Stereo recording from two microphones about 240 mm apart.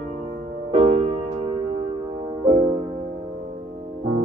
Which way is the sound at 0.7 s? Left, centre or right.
Right.